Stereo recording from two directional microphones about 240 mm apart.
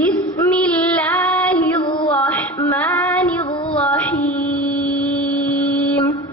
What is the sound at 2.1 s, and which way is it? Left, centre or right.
Female singing, centre.